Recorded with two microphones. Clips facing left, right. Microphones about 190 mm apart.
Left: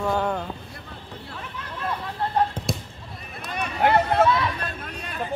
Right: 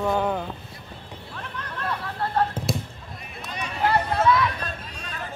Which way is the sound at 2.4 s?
15° left (ahead or behind).